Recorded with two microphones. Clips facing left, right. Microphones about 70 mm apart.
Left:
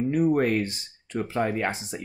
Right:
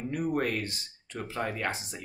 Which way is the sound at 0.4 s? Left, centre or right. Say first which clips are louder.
Left 7 dB; left.